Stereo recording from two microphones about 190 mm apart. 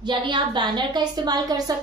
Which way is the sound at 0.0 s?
25° right (ahead or behind).